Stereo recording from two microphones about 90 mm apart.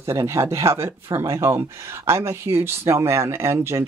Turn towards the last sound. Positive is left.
turn(degrees=-30)  # may be behind; listen again after turning